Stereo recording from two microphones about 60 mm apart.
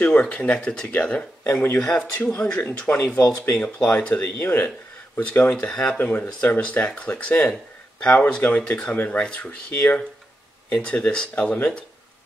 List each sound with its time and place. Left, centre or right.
0.0 s speech: centre
1.5 s speech: left
1.8 s speech: centre
4.4 s speech: left
4.6 s a sound: left
5.4 s speech: centre
5.9 s speech: left
8.9 s speech: left
9.2 s speech: centre